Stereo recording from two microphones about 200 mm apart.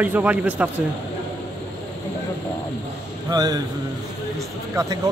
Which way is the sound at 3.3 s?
20° right (ahead or behind).